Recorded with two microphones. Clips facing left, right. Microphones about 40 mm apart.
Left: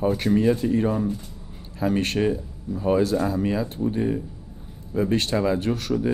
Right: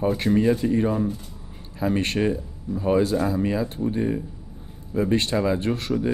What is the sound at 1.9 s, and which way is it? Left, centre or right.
Speech, right.